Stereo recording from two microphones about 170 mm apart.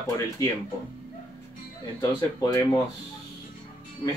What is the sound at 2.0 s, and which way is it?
Speech, 25° left (ahead or behind).